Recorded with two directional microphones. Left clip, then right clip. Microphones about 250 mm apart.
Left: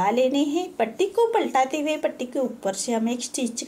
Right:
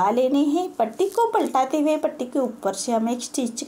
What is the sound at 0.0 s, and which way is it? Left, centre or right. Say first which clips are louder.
Speech: right 1 dB; right.